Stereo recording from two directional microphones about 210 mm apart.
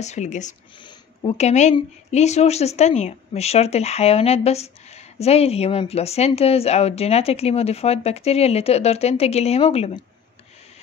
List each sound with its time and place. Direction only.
0.0 s speech: 35° left (ahead or behind)